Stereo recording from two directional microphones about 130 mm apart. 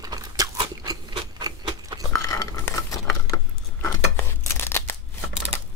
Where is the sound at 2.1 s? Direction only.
25° left (ahead or behind).